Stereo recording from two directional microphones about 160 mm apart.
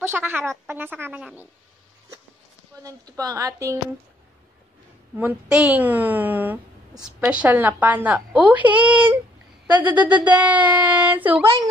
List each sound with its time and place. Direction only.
0.0 s a woman's voice: 15° right (ahead or behind)
2.8 s speech: 20° right (ahead or behind)
5.1 s a woman's voice: 10° right (ahead or behind)